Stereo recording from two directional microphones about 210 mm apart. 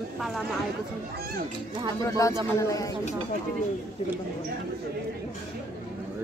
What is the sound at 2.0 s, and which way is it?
Speech, 15° left (ahead or behind).